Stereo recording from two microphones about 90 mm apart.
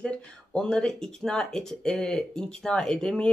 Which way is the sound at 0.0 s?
10° left (ahead or behind).